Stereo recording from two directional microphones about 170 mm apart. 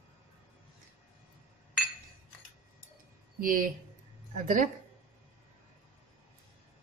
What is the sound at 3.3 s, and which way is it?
Speech, 55° right (ahead or behind).